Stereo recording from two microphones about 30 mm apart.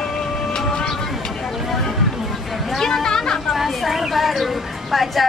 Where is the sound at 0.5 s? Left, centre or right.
Left.